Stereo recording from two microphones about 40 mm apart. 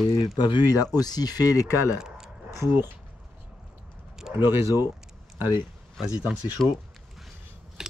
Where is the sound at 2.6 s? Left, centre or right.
Right.